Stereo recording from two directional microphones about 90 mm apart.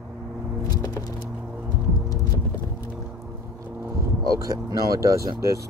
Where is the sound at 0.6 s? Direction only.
45° left (ahead or behind).